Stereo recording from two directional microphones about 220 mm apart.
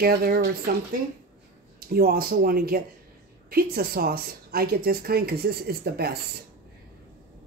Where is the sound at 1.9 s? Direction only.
45° right (ahead or behind).